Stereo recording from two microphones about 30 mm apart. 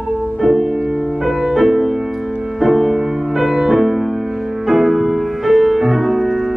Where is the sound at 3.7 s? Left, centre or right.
Centre.